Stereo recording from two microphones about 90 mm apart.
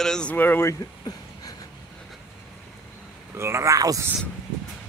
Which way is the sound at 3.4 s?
30° right (ahead or behind).